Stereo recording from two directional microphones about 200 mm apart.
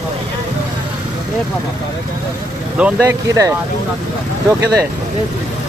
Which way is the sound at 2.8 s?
10° right (ahead or behind).